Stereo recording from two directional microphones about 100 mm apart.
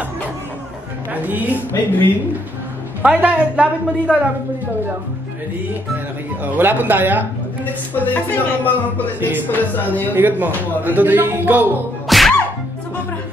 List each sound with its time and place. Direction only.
1.2 s a man's voice: 15° right (ahead or behind)
3.0 s a man's voice: 15° right (ahead or behind)
6.4 s a man's voice: 20° right (ahead or behind)
7.9 s speech: 20° left (ahead or behind)
9.2 s music: 20° right (ahead or behind)
9.5 s speech: 20° left (ahead or behind)
10.1 s a man's voice: 20° right (ahead or behind)
12.1 s music: centre (ahead or behind)